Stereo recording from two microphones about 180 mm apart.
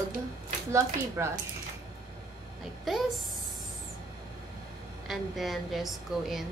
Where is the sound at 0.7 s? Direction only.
15° right (ahead or behind).